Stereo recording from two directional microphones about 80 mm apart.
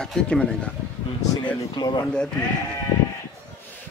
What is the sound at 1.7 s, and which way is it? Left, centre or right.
Speech, left.